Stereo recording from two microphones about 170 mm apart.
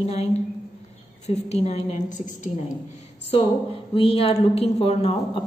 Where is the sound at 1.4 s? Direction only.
40° left (ahead or behind).